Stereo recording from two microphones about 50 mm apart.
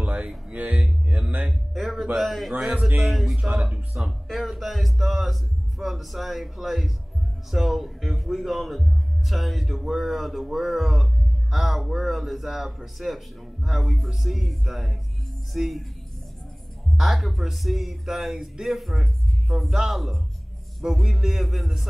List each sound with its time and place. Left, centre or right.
0.0 s music: right
0.5 s speech: right
1.5 s a man's voice: centre
3.9 s speech: right
4.3 s a man's voice: centre
16.9 s a man's voice: centre